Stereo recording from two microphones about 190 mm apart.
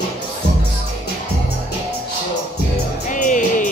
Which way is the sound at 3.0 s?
40° left (ahead or behind).